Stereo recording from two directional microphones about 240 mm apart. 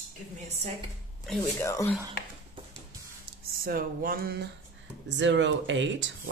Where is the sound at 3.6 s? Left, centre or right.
Right.